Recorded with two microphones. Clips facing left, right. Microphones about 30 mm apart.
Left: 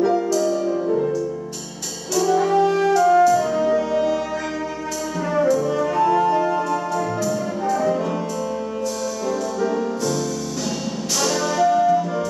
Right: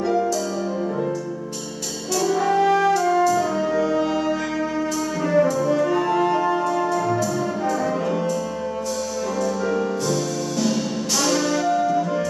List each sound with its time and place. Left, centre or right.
2.1 s music: centre
5.3 s music: centre
11.2 s music: centre